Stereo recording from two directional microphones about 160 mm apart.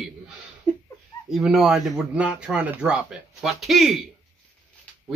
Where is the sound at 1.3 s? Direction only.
Centre (ahead or behind).